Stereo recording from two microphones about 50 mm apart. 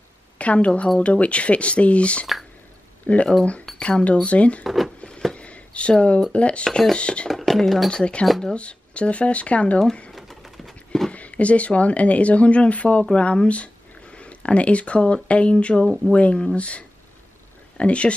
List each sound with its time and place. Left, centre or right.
0.4 s a woman's voice: left
4.6 s speech: centre
5.3 s a sound: left
6.3 s speech: left
7.2 s speech: centre
7.9 s speech: centre
10.1 s a sound: centre
11.1 s speech: left